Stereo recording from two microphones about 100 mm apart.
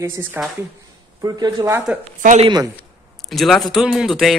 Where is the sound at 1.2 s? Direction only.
40° right (ahead or behind).